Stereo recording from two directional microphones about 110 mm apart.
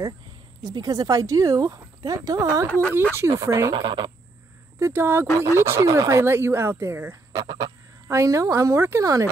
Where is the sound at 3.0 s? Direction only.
20° right (ahead or behind).